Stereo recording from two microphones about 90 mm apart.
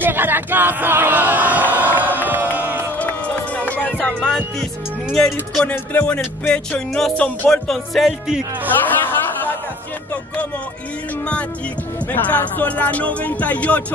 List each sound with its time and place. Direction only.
0.0 s a sound: 20° right (ahead or behind)
2.0 s crowd: 20° right (ahead or behind)
3.0 s music: 15° left (ahead or behind)
5.1 s speech: 10° left (ahead or behind)
8.8 s chatter: 20° left (ahead or behind)
12.1 s speech: 20° left (ahead or behind)